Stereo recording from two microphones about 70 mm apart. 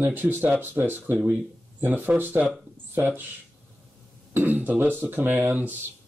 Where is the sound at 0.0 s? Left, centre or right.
Right.